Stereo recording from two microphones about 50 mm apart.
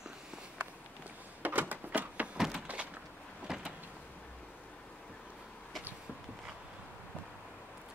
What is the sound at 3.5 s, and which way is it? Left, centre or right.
Power windows, centre.